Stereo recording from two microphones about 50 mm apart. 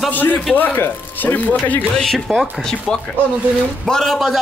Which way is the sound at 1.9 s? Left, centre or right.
Centre.